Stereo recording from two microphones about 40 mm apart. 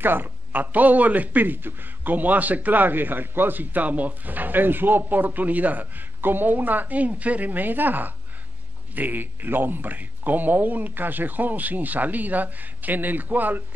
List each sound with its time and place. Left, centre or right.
0.0 s a man's voice: right